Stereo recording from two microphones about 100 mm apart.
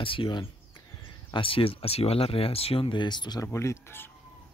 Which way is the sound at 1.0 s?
60° left (ahead or behind).